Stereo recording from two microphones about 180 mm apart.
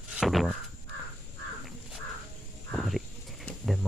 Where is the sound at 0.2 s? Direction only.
Centre (ahead or behind).